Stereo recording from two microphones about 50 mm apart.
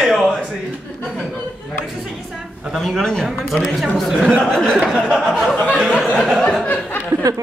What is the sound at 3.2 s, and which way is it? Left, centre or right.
A man's voice, centre.